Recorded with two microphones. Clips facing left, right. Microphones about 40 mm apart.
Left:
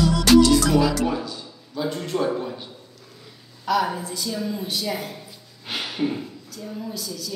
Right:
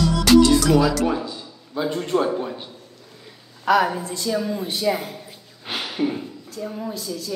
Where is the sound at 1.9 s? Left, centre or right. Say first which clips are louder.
Right 4 dB; centre.